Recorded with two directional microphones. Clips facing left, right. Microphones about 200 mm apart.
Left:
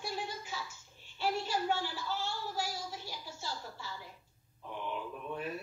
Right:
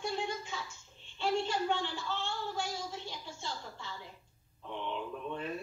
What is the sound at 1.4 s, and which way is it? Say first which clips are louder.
Speech: right 1 dB; 5° left (ahead or behind).